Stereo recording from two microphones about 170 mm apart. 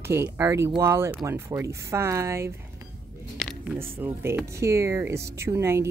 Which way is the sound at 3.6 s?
15° right (ahead or behind).